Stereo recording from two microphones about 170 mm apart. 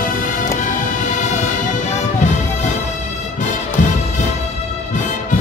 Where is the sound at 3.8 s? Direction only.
50° left (ahead or behind).